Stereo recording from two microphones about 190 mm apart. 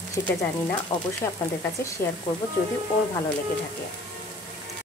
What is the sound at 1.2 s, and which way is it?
Speech, 20° left (ahead or behind).